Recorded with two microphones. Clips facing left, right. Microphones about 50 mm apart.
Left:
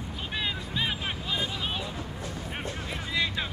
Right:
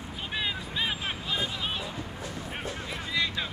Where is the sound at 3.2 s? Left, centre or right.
Centre.